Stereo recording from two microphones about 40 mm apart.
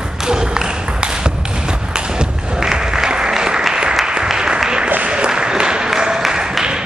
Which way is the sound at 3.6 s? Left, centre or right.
Centre.